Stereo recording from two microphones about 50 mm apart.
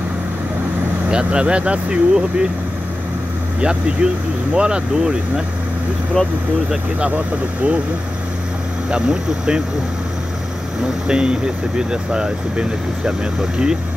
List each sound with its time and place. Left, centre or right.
1.1 s speech: right
4.0 s speech: right
6.2 s speech: centre
8.9 s speech: centre
11.1 s speech: centre